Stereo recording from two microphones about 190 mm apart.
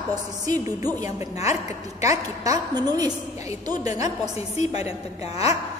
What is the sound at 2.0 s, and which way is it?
A woman's voice, 20° right (ahead or behind).